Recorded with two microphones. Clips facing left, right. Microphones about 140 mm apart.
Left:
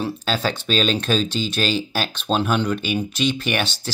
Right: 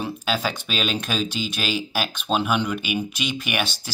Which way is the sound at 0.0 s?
10° right (ahead or behind).